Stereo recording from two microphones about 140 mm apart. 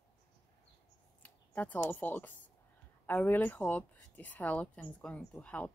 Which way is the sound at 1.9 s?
15° left (ahead or behind).